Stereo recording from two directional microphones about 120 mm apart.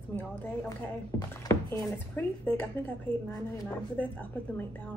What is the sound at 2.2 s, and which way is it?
Speech, 15° left (ahead or behind).